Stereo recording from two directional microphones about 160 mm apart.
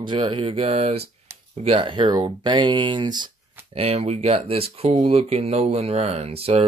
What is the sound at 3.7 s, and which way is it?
Speech, 40° right (ahead or behind).